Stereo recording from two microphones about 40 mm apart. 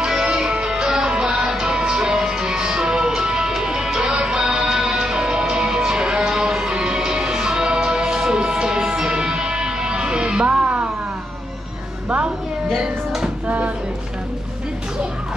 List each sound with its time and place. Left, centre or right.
0.2 s music: right
12.7 s music: centre